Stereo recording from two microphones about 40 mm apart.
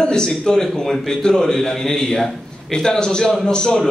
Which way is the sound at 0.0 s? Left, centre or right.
Centre.